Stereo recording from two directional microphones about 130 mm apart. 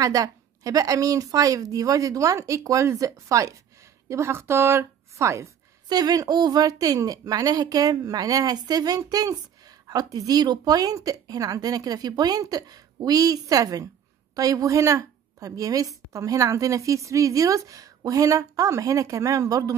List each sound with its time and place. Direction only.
0.0 s a woman's voice: 25° right (ahead or behind)